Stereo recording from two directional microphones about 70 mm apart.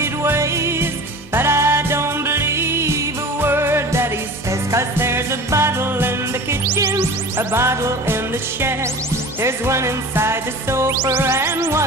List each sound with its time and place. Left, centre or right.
0.0 s music: right